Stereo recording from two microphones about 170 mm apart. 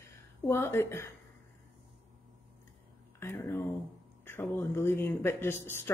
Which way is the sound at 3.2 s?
15° left (ahead or behind).